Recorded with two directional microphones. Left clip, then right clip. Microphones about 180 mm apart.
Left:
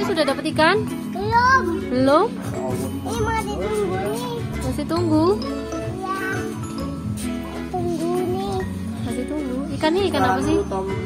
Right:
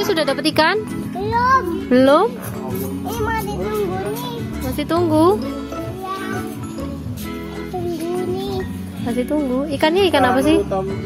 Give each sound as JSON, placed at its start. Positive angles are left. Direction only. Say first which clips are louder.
{"t": 0.1, "sound": "speech", "louder": "right 4 dB", "side_deg": -50}
{"t": 1.3, "sound": "a child's voice", "louder": "even", "side_deg": -10}
{"t": 1.9, "sound": "a woman's voice", "louder": "right 5 dB", "side_deg": -40}
{"t": 4.7, "sound": "speech", "louder": "right 4 dB", "side_deg": -25}
{"t": 9.8, "sound": "a woman's voice", "louder": "right 5 dB", "side_deg": -35}